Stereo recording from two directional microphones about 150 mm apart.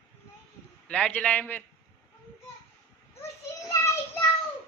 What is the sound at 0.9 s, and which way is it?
Speech, 10° left (ahead or behind).